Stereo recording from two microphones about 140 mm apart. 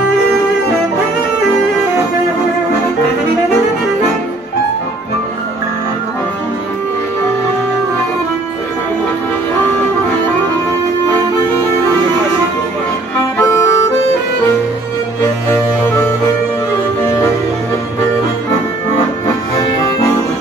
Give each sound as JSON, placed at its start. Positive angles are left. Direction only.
{"t": 13.4, "sound": "music", "side_deg": 20}
{"t": 15.5, "sound": "music", "side_deg": 20}